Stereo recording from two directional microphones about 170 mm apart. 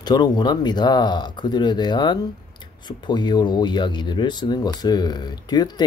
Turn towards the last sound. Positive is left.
turn(degrees=25)  # may be behind; listen again after turning